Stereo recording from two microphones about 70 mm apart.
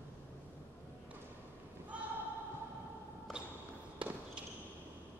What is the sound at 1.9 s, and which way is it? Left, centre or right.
Choir, centre.